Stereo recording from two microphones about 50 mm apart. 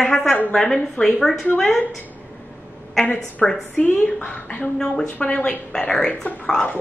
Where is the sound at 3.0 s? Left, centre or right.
Left.